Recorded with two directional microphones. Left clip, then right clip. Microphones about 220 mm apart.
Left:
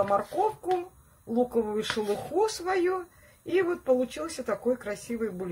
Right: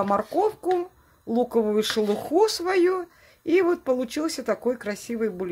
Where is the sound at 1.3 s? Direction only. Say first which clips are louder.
Right 4 dB; 45° right (ahead or behind).